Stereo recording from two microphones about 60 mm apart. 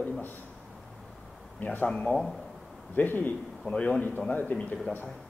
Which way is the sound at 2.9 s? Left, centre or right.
Left.